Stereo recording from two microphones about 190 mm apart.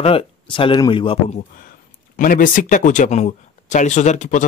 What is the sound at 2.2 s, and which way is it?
Speech, 45° left (ahead or behind).